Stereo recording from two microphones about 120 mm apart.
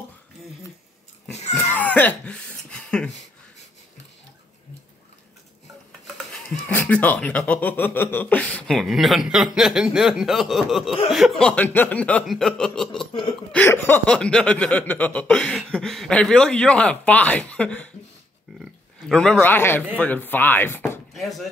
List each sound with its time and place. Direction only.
1.7 s cough: 15° left (ahead or behind)
6.7 s speech: 15° left (ahead or behind)
13.7 s speech: 15° left (ahead or behind)
18.6 s a sound: 5° left (ahead or behind)
19.4 s speech: 15° left (ahead or behind)
21.1 s speech: centre (ahead or behind)